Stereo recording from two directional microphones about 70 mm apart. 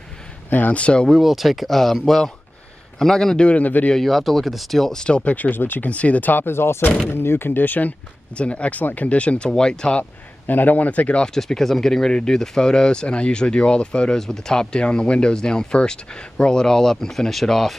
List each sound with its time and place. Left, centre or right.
0.5 s speech: left
1.0 s speech: centre; by 3.9 s left
3.9 s speech: centre
5.0 s speech: centre
8.4 s speech: centre
10.4 s speech: left; by 17.7 s centre